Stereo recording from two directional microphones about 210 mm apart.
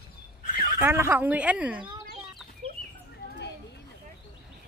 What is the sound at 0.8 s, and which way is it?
Speech, 10° right (ahead or behind).